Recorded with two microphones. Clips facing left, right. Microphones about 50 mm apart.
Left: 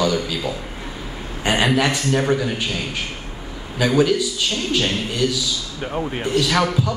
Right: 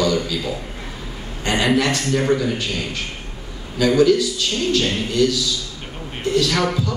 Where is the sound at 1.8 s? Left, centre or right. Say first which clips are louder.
Left 1 dB; left.